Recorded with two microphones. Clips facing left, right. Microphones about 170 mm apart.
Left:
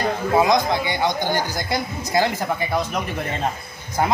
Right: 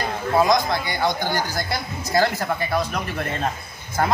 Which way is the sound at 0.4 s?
20° left (ahead or behind).